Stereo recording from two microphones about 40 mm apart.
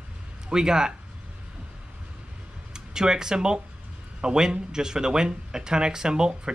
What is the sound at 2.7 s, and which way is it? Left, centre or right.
Speech, centre.